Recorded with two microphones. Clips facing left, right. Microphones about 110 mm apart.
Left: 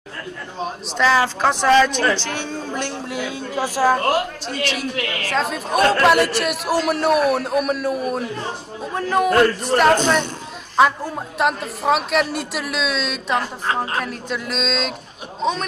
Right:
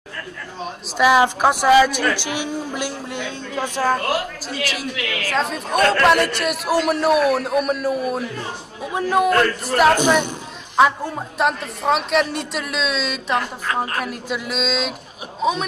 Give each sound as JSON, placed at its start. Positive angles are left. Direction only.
{"t": 0.9, "sound": "a woman's voice", "side_deg": -15}
{"t": 3.1, "sound": "a man's voice", "side_deg": 5}
{"t": 4.9, "sound": "a woman's voice", "side_deg": 40}
{"t": 5.3, "sound": "a man's voice", "side_deg": 0}
{"t": 10.8, "sound": "a man's voice", "side_deg": 0}